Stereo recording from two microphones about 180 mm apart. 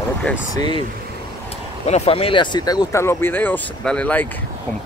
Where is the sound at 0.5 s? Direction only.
25° left (ahead or behind).